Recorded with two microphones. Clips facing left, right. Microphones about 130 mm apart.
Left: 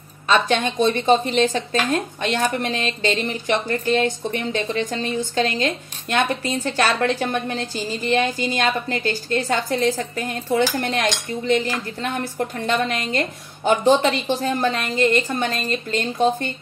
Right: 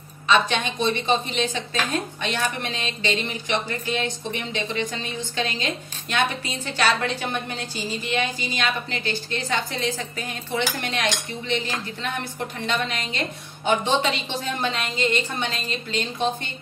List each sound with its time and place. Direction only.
0.3 s a woman's voice: 45° left (ahead or behind)